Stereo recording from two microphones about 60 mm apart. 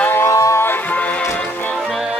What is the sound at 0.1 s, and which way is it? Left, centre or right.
Music, left.